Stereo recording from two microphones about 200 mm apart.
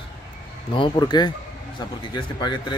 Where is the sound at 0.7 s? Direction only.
25° left (ahead or behind).